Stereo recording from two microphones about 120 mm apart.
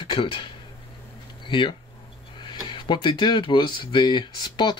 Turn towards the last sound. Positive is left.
turn(degrees=40)  # may be behind; listen again after turning